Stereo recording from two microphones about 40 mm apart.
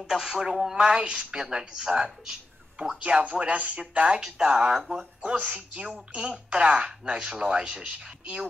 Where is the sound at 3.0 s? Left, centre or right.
Right.